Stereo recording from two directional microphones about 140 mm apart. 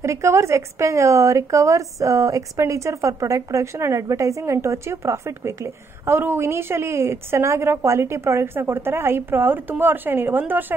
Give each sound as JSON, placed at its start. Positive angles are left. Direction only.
{"t": 0.0, "sound": "a woman's voice", "side_deg": -20}